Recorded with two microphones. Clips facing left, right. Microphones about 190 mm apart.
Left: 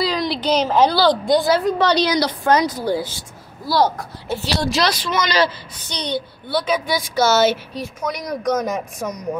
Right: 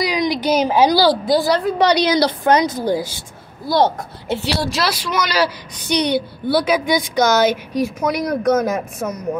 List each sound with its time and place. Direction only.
0.0 s a woman's voice: 15° right (ahead or behind)
1.8 s a woman's voice: 15° right (ahead or behind)
4.6 s a woman's voice: 5° right (ahead or behind)